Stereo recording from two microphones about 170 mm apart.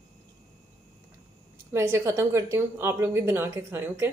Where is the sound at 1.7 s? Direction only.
15° right (ahead or behind).